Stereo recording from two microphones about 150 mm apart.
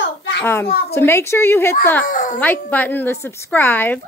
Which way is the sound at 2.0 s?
65° left (ahead or behind).